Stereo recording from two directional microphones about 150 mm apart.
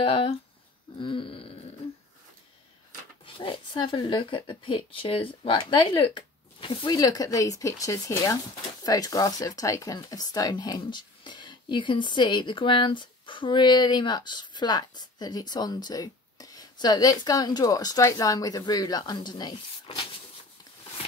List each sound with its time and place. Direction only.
0.0 s speech: 35° left (ahead or behind)
3.3 s speech: 35° left (ahead or behind)